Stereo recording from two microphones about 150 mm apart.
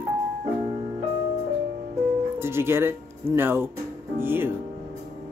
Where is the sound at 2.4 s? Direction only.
15° right (ahead or behind).